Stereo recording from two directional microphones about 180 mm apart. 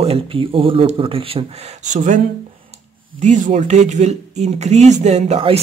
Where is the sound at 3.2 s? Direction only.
40° right (ahead or behind).